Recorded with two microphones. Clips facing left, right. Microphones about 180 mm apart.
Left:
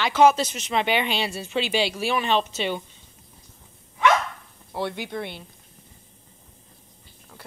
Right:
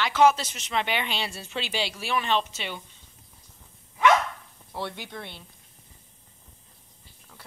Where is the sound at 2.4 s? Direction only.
30° left (ahead or behind).